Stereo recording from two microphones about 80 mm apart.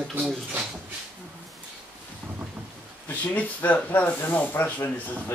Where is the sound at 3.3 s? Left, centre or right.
Left.